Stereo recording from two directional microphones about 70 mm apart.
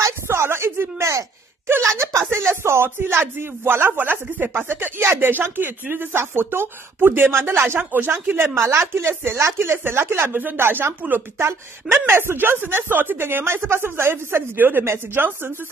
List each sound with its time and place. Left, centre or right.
0.3 s a woman's voice: right